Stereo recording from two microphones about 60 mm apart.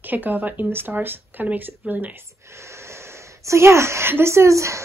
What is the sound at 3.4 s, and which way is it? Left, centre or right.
A woman's voice, right.